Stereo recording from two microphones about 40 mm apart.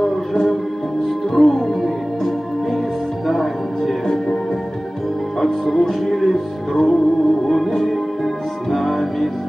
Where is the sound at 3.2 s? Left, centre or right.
Centre.